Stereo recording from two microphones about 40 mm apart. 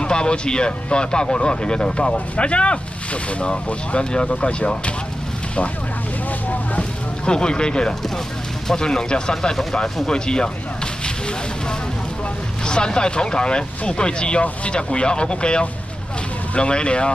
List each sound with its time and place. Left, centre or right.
0.0 s speech: left
6.8 s a sound: left
8.6 s speech: centre
12.6 s speech: left